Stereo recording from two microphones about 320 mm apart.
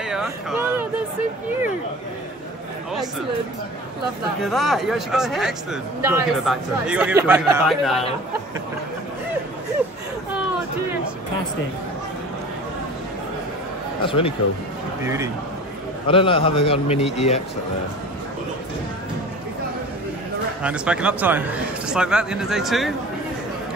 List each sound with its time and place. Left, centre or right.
0.0 s a sound: centre
4.4 s a man's voice: centre
14.0 s a man's voice: centre
16.1 s a man's voice: centre
20.6 s a man's voice: centre